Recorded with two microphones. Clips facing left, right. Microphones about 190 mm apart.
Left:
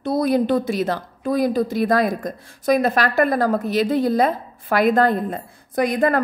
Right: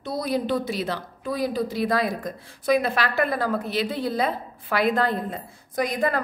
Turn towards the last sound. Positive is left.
turn(degrees=55)  # may be behind; listen again after turning